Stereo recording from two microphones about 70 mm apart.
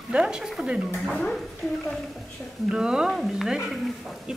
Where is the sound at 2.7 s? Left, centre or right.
Centre.